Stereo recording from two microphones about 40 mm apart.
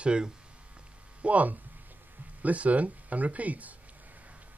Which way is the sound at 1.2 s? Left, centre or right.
Right.